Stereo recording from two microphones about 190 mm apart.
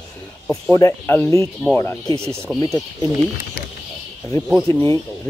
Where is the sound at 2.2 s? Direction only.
15° right (ahead or behind).